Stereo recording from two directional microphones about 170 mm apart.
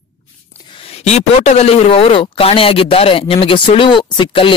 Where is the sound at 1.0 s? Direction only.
40° left (ahead or behind).